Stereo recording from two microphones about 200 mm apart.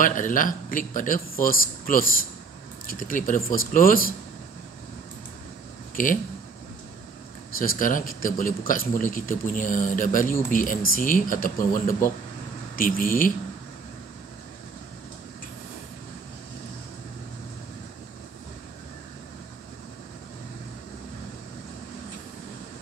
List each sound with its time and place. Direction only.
0.0 s speech: 40° left (ahead or behind)
6.0 s speech: 40° left (ahead or behind)
7.5 s speech: 45° left (ahead or behind)